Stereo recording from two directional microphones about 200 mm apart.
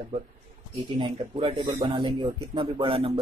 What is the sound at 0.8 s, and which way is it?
Speech, 25° right (ahead or behind).